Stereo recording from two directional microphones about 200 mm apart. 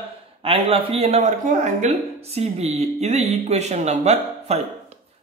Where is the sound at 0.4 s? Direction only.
30° right (ahead or behind).